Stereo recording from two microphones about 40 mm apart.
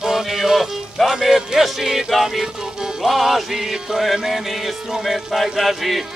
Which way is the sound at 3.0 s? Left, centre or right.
Centre.